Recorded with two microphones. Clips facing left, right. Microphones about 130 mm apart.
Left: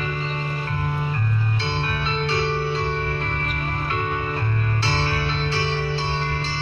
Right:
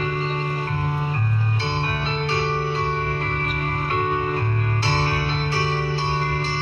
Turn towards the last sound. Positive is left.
turn(degrees=-50)  # may be behind; listen again after turning